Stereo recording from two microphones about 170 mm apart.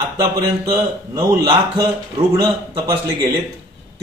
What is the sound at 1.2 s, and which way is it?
A man's voice, 25° right (ahead or behind).